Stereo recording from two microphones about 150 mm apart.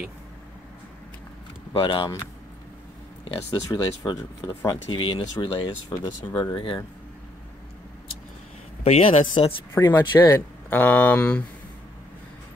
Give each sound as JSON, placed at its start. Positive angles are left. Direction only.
{"t": 1.7, "sound": "speech", "side_deg": 35}
{"t": 3.5, "sound": "speech", "side_deg": 25}
{"t": 8.8, "sound": "speech", "side_deg": 45}
{"t": 9.3, "sound": "speech", "side_deg": 30}
{"t": 9.8, "sound": "speech", "side_deg": 15}